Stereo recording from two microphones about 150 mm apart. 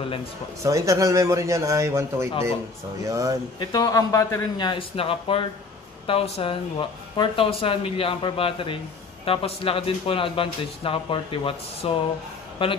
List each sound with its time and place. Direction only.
0.6 s a man's voice: 20° right (ahead or behind)
3.5 s speech: 25° left (ahead or behind)